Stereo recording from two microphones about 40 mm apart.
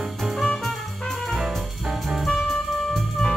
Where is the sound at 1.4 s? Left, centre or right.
Centre.